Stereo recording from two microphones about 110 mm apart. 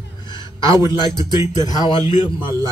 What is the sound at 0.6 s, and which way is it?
Speech, 30° right (ahead or behind).